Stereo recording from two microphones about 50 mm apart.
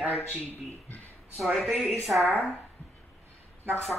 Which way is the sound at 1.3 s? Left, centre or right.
Centre.